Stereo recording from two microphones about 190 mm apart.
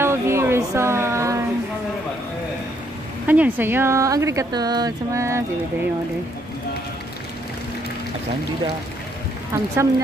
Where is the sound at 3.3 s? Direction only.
10° right (ahead or behind).